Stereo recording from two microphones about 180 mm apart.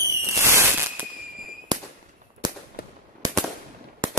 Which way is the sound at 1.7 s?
25° right (ahead or behind).